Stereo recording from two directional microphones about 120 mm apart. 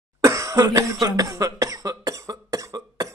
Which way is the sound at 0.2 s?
25° right (ahead or behind).